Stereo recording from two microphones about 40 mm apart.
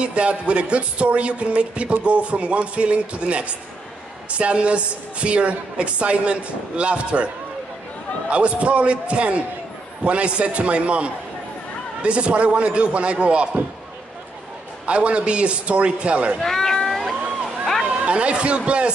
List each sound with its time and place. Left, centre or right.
0.0 s speech: right
8.3 s a man's voice: right
14.9 s a man's voice: right
16.3 s speech: centre
16.7 s cat: centre
18.0 s a man's voice: right